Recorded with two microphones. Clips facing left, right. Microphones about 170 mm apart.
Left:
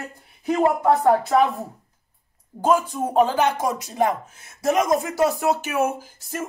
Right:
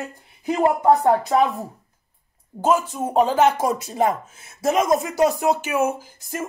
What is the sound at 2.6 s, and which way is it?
Speech, 15° right (ahead or behind).